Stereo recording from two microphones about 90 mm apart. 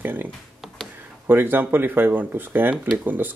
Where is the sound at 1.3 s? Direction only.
20° right (ahead or behind).